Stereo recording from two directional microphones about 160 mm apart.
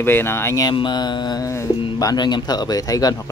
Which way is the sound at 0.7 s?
30° left (ahead or behind).